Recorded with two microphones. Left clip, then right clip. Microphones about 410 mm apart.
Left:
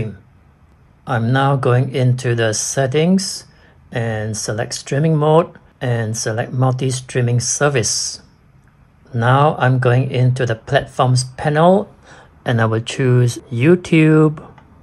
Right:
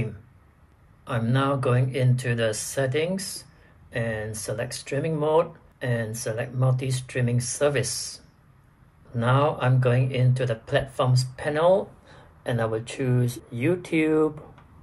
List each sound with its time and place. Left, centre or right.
1.0 s speech: centre
9.1 s speech: centre